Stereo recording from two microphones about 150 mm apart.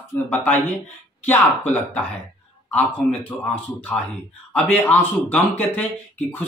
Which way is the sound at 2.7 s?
10° left (ahead or behind).